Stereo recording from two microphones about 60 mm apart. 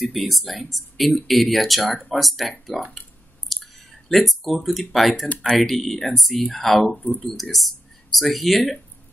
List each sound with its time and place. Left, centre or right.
0.0 s speech: centre
3.5 s a sound: centre
4.1 s speech: centre
7.0 s speech: left
7.2 s speech: centre